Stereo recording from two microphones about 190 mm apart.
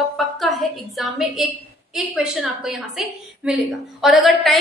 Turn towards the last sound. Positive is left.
turn(degrees=0)  # may be behind; listen again after turning